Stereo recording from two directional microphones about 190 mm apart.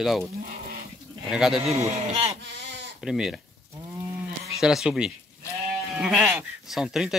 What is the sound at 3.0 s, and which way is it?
Speech, 5° right (ahead or behind).